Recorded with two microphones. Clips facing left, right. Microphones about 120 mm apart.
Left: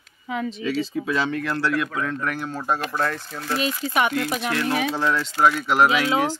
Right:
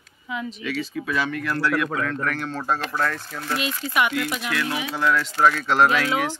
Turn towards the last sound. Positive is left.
turn(degrees=20)  # may be behind; listen again after turning